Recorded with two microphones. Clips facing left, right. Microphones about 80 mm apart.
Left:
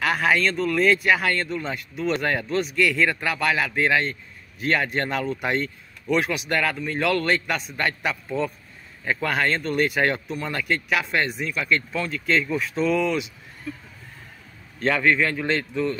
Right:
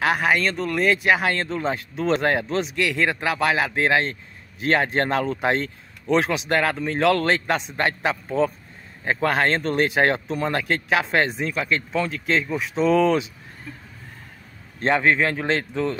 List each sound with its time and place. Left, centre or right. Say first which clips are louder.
0.2 s speech: even; centre
1.5 s speech: right 4 dB; right
12.8 s speech: right 5 dB; right
14.8 s speech: right 1 dB; right